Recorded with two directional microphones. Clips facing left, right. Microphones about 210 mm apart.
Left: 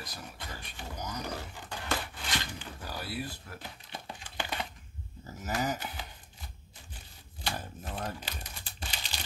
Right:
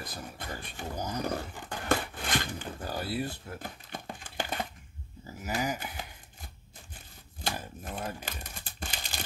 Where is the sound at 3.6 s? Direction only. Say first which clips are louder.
Right 4 dB; 50° right (ahead or behind).